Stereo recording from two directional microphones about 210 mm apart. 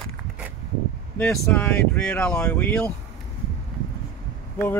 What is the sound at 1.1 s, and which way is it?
Speech, 5° left (ahead or behind).